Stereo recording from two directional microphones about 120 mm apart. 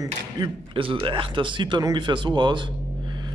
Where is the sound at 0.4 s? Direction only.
35° right (ahead or behind).